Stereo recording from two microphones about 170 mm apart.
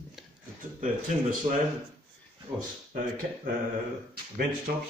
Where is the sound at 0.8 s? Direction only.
55° right (ahead or behind).